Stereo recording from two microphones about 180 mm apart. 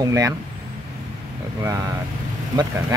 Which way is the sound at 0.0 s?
20° right (ahead or behind).